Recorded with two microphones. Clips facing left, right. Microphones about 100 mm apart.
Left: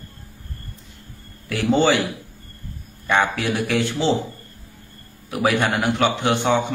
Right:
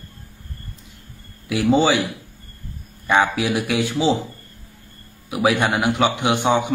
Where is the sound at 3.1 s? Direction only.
10° right (ahead or behind).